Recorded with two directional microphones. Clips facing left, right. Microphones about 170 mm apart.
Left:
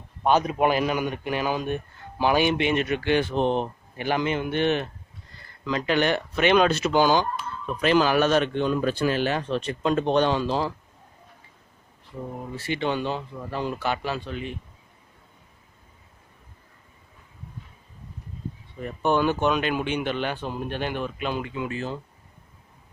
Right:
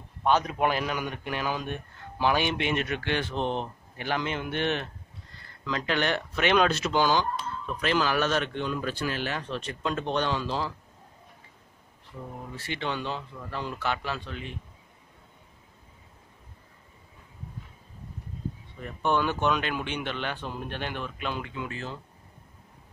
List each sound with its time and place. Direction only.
0.2 s a man's voice: 10° left (ahead or behind)
12.5 s a man's voice: 5° left (ahead or behind)
18.8 s a man's voice: 10° left (ahead or behind)